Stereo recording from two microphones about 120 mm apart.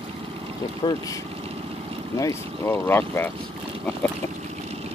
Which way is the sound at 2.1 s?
25° left (ahead or behind).